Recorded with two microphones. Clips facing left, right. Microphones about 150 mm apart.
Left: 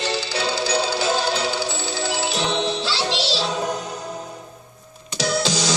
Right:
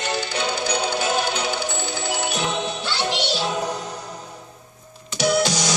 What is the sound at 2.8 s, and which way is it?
Music, 90° left.